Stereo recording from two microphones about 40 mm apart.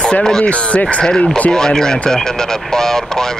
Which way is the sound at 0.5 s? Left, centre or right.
Left.